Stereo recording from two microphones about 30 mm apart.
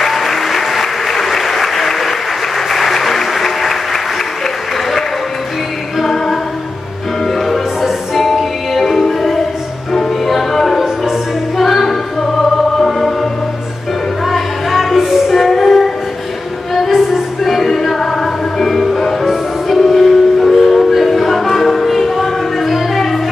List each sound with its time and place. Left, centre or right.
0.0 s applause: centre
5.9 s music: centre
14.2 s music: centre
15.3 s music: centre
16.9 s music: centre
17.6 s music: centre